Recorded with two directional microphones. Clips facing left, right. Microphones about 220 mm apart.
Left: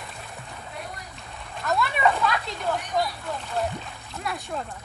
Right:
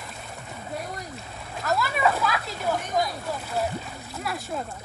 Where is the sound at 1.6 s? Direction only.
Centre (ahead or behind).